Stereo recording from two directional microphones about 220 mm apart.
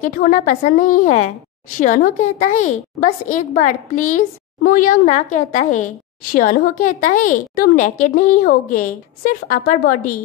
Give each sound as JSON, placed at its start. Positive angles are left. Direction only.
{"t": 0.0, "sound": "a woman's voice", "side_deg": 35}
{"t": 6.7, "sound": "a woman's voice", "side_deg": 80}
{"t": 7.0, "sound": "a woman's voice", "side_deg": 35}